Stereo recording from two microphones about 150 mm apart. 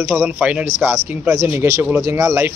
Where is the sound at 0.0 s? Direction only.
15° right (ahead or behind).